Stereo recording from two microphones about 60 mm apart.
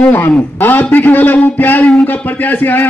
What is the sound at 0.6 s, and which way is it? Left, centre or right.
A man's voice, left.